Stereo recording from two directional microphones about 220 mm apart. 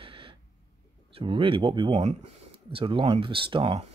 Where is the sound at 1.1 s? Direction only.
25° right (ahead or behind).